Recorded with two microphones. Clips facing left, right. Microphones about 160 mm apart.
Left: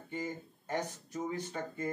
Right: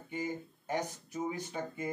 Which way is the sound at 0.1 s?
10° right (ahead or behind).